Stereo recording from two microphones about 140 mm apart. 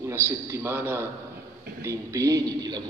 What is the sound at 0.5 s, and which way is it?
A man's voice, 15° right (ahead or behind).